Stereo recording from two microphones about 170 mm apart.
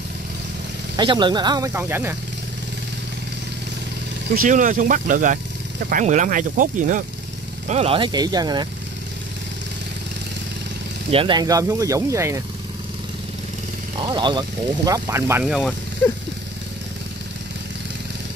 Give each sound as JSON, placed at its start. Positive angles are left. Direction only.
{"t": 0.9, "sound": "speech", "side_deg": -25}
{"t": 4.4, "sound": "speech", "side_deg": -50}
{"t": 7.6, "sound": "speech", "side_deg": -35}
{"t": 11.1, "sound": "speech", "side_deg": -30}
{"t": 13.9, "sound": "speech", "side_deg": -25}
{"t": 15.4, "sound": "speech", "side_deg": -5}